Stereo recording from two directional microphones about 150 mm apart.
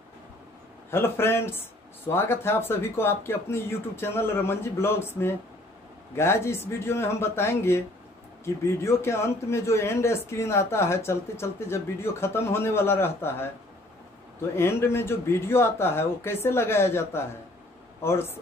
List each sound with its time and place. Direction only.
0.8 s speech: 15° left (ahead or behind)
8.8 s speech: 15° left (ahead or behind)
14.5 s speech: 15° left (ahead or behind)